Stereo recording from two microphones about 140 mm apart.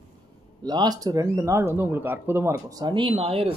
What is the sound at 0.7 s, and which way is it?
Speech, 30° right (ahead or behind).